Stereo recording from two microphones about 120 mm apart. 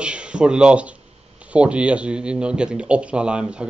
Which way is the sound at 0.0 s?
10° right (ahead or behind).